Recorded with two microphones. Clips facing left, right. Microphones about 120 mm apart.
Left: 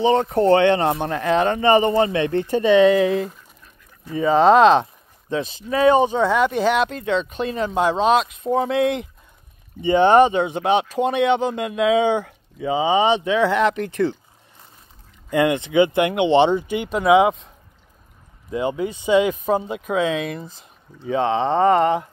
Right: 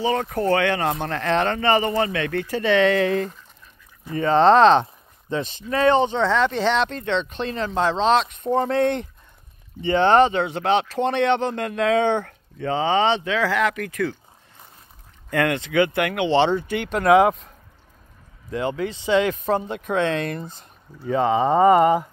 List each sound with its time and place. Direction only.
0.0 s speech: 25° left (ahead or behind); by 9.1 s 5° left (ahead or behind)
9.8 s speech: 15° left (ahead or behind)
15.2 s speech: 15° left (ahead or behind); by 17.5 s centre (ahead or behind)
18.5 s speech: 20° left (ahead or behind); by 22.0 s 5° right (ahead or behind)